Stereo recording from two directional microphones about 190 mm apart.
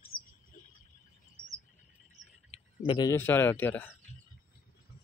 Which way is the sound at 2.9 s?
20° left (ahead or behind).